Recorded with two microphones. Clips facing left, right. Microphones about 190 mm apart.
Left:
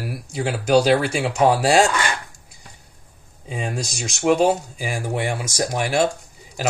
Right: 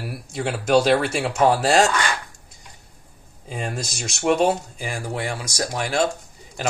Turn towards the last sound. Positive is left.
turn(degrees=15)  # may be behind; listen again after turning